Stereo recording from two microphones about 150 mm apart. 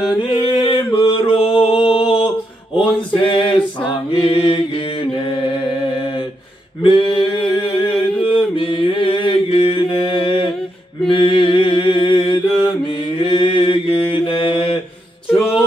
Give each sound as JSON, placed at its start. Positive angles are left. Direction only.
{"t": 0.1, "sound": "mantra", "side_deg": 35}
{"t": 6.8, "sound": "a sound", "side_deg": 35}
{"t": 11.1, "sound": "mantra", "side_deg": 35}